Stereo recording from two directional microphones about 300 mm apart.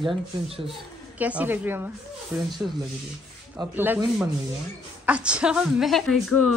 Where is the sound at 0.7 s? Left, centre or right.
Centre.